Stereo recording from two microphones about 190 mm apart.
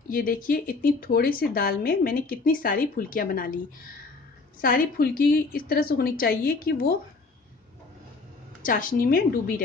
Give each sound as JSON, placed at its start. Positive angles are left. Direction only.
{"t": 0.1, "sound": "a woman's voice", "side_deg": 45}
{"t": 8.6, "sound": "a woman's voice", "side_deg": 45}